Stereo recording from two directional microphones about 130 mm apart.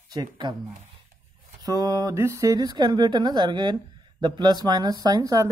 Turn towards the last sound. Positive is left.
turn(degrees=-25)  # may be behind; listen again after turning